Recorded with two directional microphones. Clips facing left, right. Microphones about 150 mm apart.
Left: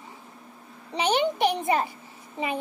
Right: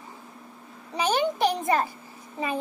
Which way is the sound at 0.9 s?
20° left (ahead or behind).